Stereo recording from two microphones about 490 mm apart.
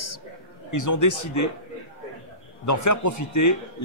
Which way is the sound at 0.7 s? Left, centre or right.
Left.